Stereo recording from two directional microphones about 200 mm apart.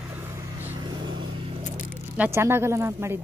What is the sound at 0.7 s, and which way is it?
Vehicle, 20° right (ahead or behind).